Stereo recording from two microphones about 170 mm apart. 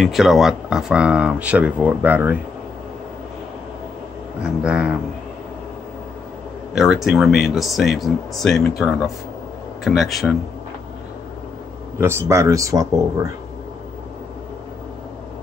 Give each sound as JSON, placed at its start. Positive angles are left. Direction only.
{"t": 0.0, "sound": "speech", "side_deg": 0}
{"t": 4.4, "sound": "speech", "side_deg": -5}
{"t": 6.7, "sound": "speech", "side_deg": 0}
{"t": 12.0, "sound": "speech", "side_deg": -15}